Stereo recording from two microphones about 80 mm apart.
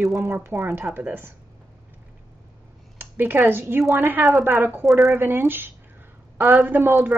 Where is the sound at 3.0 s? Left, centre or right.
Right.